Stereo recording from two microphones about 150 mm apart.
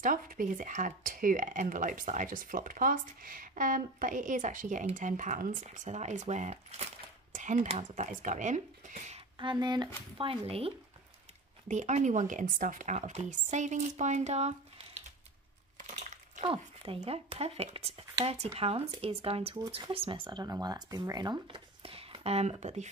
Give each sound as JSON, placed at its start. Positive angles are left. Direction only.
{"t": 0.0, "sound": "speech", "side_deg": -65}
{"t": 9.4, "sound": "speech", "side_deg": -30}
{"t": 11.6, "sound": "speech", "side_deg": -55}
{"t": 15.8, "sound": "crushing", "side_deg": -50}
{"t": 16.4, "sound": "speech", "side_deg": -40}